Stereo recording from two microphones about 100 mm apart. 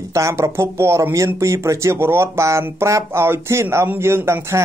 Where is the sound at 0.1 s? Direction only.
30° right (ahead or behind).